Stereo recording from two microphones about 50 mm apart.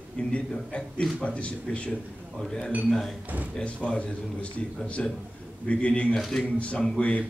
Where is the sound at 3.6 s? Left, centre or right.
Left.